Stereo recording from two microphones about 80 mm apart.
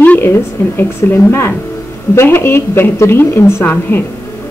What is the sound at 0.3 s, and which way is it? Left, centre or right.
A woman's voice, left.